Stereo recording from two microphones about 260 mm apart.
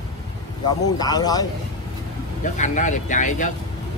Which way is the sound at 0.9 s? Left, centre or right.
Centre.